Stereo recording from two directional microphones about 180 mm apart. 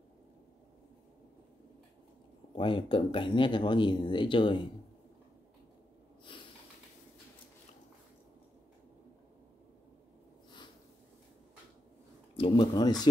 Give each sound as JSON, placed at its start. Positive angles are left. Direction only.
{"t": 2.5, "sound": "speech", "side_deg": 30}
{"t": 6.3, "sound": "snort", "side_deg": 25}
{"t": 12.4, "sound": "speech", "side_deg": 25}